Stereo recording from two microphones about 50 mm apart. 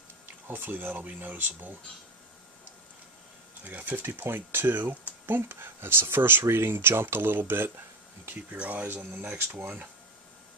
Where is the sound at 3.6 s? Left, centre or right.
Right.